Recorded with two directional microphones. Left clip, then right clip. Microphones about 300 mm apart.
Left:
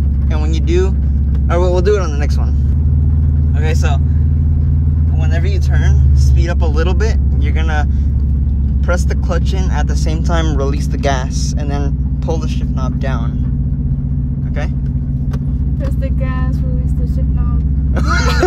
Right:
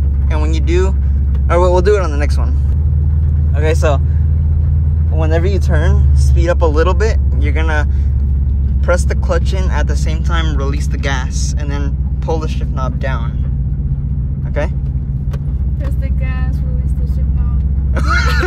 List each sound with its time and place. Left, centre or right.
1.5 s speech: centre
3.6 s speech: centre
5.3 s speech: centre
8.8 s speech: centre
12.8 s speech: centre
17.9 s speech: centre